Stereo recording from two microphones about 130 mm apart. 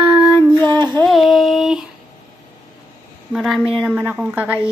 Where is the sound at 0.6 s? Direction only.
15° left (ahead or behind).